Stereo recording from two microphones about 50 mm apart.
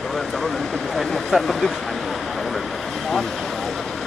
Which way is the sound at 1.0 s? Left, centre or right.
Centre.